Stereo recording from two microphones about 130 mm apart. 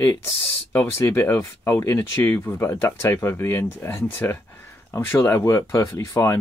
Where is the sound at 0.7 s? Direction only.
20° left (ahead or behind).